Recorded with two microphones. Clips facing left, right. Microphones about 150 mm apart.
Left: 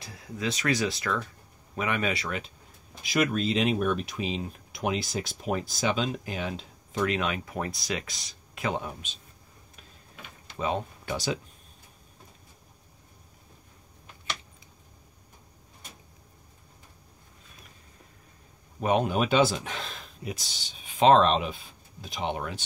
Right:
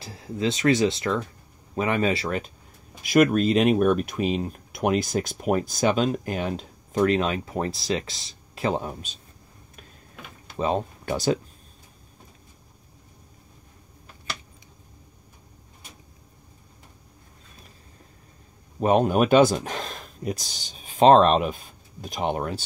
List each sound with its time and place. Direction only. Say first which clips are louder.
0.0 s speech: right 6 dB; 30° right (ahead or behind)
3.0 s speech: right 8 dB; 55° right (ahead or behind); by 9.2 s 35° right (ahead or behind)
10.6 s speech: right 5 dB; 40° right (ahead or behind)
18.8 s speech: right 5 dB; 40° right (ahead or behind)